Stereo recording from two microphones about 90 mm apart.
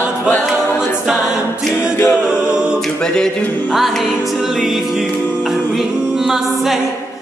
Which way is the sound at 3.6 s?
Centre (ahead or behind).